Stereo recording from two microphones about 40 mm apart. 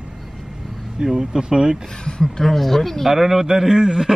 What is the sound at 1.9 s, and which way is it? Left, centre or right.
Speech, centre.